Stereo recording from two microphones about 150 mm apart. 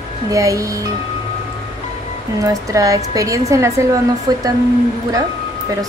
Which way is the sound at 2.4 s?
20° right (ahead or behind).